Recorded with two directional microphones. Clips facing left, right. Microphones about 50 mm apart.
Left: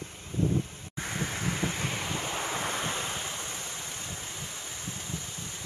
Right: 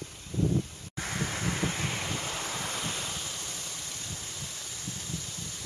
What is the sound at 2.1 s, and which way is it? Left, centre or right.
Waves, left.